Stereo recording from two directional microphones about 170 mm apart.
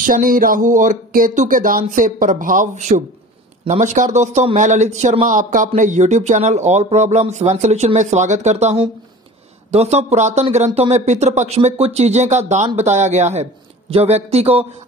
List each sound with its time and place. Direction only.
0.0 s speech: 55° right (ahead or behind); by 14.7 s 35° right (ahead or behind)